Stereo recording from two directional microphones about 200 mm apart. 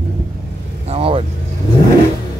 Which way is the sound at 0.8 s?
30° right (ahead or behind).